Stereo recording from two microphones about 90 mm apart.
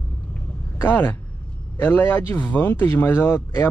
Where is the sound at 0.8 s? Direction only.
20° left (ahead or behind).